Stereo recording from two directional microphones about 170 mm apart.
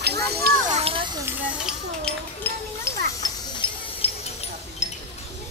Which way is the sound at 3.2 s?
25° left (ahead or behind).